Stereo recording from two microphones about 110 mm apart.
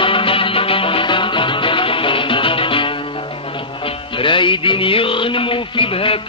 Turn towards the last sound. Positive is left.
turn(degrees=55)  # may be behind; listen again after turning